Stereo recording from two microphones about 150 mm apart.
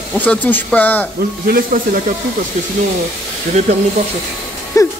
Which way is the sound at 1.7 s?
70° right (ahead or behind).